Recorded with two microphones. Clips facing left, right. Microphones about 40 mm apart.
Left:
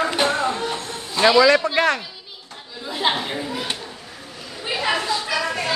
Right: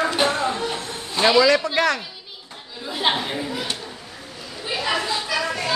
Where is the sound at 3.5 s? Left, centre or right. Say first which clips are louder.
Left 1 dB; centre.